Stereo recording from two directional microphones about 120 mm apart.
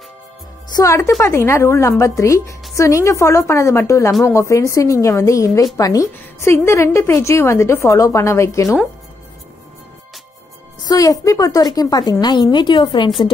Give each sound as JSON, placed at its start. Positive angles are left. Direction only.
{"t": 0.7, "sound": "a woman's voice", "side_deg": 30}
{"t": 10.8, "sound": "a woman's voice", "side_deg": 30}